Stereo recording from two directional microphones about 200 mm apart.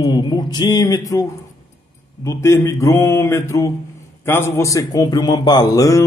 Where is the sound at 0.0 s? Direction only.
20° left (ahead or behind).